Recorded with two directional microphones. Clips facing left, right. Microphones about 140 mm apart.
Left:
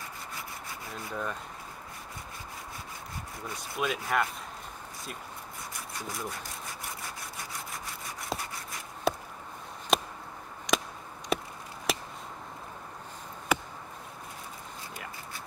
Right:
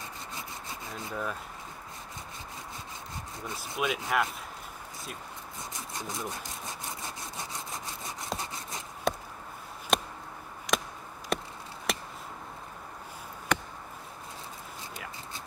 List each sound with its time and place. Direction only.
1.1 s rub: 5° right (ahead or behind)
3.5 s rub: centre (ahead or behind)
5.7 s sawing: 20° right (ahead or behind)
8.4 s a sound: 20° right (ahead or behind)
9.1 s chop: centre (ahead or behind)
9.9 s a sound: centre (ahead or behind)
10.7 s chop: 5° right (ahead or behind)
11.9 s a sound: centre (ahead or behind)
13.5 s chop: 5° left (ahead or behind)